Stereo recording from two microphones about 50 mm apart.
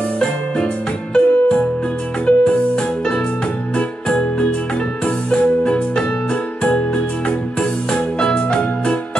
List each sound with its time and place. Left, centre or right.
1.1 s music: centre
7.9 s music: centre